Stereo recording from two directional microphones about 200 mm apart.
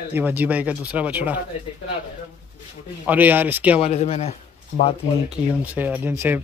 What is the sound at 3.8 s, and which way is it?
Speech, 30° left (ahead or behind).